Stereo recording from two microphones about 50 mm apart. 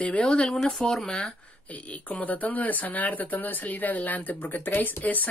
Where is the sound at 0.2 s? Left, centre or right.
Centre.